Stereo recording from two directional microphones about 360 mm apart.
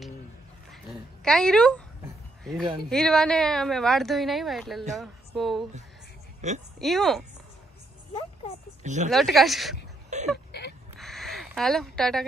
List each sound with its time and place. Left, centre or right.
1.2 s speech: centre
2.9 s speech: centre
6.4 s speech: centre
6.8 s speech: centre
8.8 s a woman's voice: centre
9.1 s speech: centre
10.0 s a sound: centre
10.5 s a sound: left
11.0 s a sound: centre